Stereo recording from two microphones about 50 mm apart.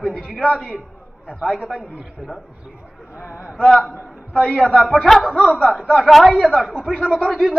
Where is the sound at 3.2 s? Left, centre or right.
Left.